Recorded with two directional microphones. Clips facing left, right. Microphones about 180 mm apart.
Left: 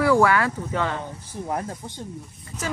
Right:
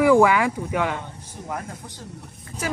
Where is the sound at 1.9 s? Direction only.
75° right (ahead or behind).